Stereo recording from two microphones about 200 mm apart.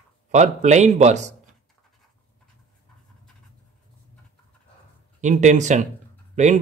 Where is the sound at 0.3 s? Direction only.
35° right (ahead or behind).